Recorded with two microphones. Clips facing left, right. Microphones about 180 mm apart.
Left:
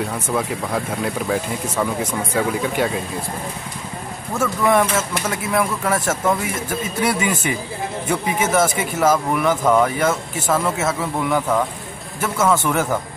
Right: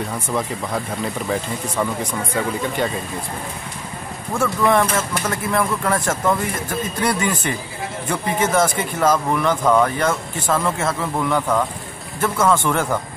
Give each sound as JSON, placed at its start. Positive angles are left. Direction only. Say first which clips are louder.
{"t": 0.0, "sound": "speech", "louder": "left 1 dB", "side_deg": 5}
{"t": 4.3, "sound": "speech", "louder": "even", "side_deg": 5}